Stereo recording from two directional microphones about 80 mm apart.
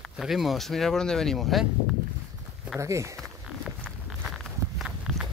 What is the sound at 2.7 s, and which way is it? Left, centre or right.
Speech, right.